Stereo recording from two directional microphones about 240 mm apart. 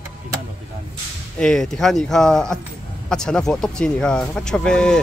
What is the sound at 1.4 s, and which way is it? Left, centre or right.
Speech, centre.